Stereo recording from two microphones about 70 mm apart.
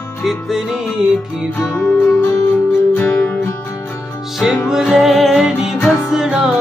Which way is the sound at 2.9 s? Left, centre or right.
Left.